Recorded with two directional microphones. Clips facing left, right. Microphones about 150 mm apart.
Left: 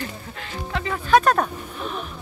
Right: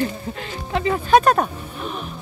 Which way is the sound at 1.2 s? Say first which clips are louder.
Right 2 dB; 10° right (ahead or behind).